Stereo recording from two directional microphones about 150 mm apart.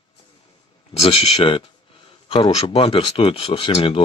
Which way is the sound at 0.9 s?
40° left (ahead or behind).